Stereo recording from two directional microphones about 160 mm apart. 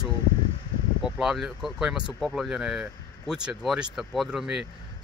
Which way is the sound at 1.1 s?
Centre (ahead or behind).